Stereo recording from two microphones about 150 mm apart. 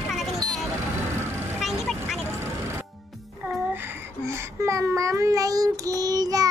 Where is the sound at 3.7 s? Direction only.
15° right (ahead or behind).